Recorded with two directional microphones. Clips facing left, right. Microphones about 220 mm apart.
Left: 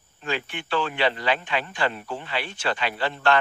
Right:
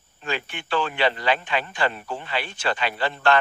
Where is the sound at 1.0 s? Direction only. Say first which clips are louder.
Right 1 dB; 45° right (ahead or behind).